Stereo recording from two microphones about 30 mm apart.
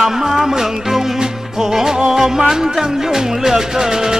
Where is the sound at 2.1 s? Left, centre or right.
Centre.